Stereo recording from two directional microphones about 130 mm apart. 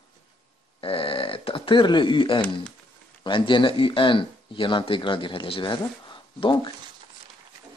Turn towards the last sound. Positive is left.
turn(degrees=40)  # may be behind; listen again after turning